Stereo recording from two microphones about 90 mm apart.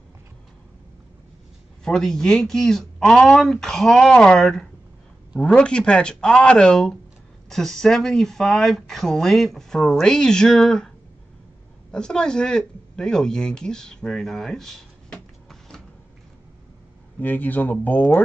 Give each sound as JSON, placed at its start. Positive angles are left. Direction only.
{"t": 1.9, "sound": "speech", "side_deg": 5}
{"t": 11.9, "sound": "speech", "side_deg": 10}
{"t": 17.2, "sound": "speech", "side_deg": 20}